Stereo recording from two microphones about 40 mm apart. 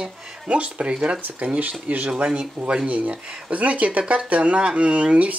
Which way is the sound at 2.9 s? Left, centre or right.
Right.